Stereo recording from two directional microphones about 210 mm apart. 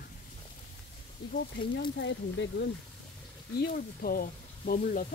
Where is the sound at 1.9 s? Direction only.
55° left (ahead or behind).